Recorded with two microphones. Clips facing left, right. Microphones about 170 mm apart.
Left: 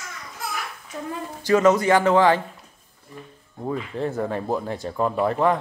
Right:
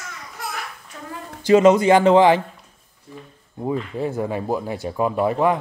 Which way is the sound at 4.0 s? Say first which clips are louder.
Right 1 dB; 10° right (ahead or behind).